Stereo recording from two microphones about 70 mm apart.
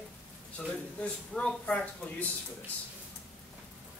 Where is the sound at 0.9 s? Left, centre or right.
Centre.